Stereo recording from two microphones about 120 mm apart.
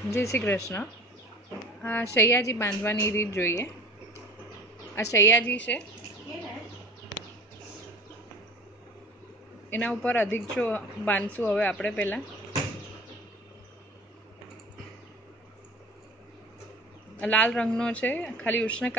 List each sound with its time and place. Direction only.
0.1 s a woman's voice: 25° left (ahead or behind)
4.9 s a woman's voice: 25° left (ahead or behind)
5.4 s speech: 10° left (ahead or behind)
9.7 s speech: 15° left (ahead or behind)
17.2 s speech: 10° left (ahead or behind)